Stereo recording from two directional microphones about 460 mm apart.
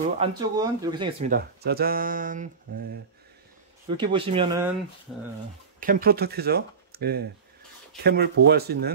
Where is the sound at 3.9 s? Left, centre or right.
Centre.